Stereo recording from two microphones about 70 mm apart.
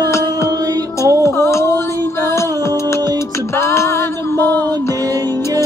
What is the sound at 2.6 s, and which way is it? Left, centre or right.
Music, left.